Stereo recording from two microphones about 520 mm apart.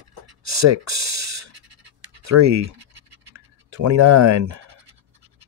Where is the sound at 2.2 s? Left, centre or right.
Right.